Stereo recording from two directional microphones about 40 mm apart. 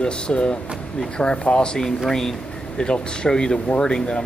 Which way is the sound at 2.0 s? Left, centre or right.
Centre.